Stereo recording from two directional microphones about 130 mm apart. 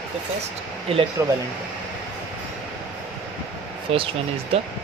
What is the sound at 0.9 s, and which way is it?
Speech, 45° right (ahead or behind).